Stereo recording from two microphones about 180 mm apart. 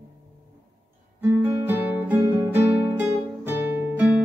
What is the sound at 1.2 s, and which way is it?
Guitar, 10° right (ahead or behind).